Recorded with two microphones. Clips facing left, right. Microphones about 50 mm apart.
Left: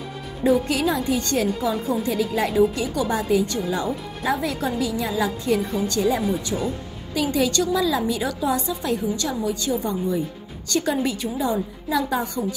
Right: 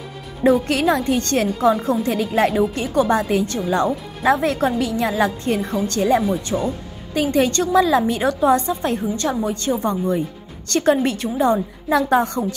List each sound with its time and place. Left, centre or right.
0.4 s speech: right
3.6 s speech: right